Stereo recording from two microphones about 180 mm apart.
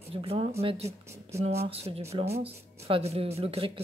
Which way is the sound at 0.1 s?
30° right (ahead or behind).